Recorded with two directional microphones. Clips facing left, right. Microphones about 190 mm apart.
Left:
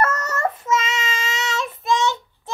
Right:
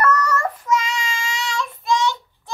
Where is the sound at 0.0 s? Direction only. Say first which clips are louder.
Right 2 dB; 25° left (ahead or behind).